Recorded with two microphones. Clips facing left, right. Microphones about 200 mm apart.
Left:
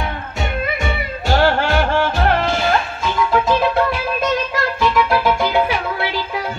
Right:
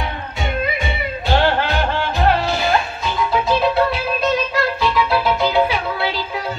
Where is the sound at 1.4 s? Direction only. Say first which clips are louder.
Left 5 dB; 15° right (ahead or behind).